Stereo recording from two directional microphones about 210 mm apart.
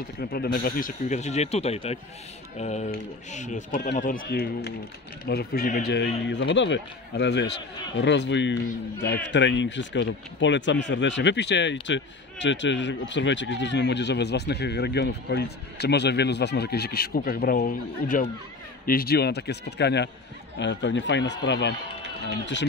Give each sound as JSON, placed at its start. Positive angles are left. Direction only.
{"t": 0.2, "sound": "speech", "side_deg": 45}